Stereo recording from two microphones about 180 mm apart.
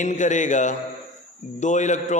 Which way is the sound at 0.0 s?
45° left (ahead or behind).